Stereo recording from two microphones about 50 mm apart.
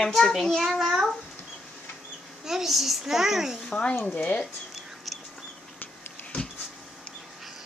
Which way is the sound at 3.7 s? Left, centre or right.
Left.